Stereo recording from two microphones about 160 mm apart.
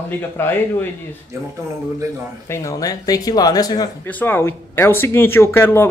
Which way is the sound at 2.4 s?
15° left (ahead or behind).